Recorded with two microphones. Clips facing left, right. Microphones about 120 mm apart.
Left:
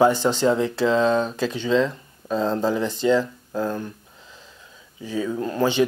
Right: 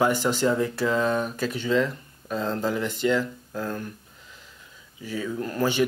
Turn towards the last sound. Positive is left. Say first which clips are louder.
# left 3 dB
turn(degrees=25)  # may be behind; listen again after turning